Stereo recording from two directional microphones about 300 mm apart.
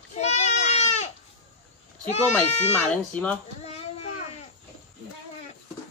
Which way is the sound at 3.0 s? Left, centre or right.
Centre.